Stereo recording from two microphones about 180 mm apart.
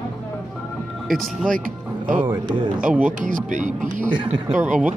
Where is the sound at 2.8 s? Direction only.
5° right (ahead or behind).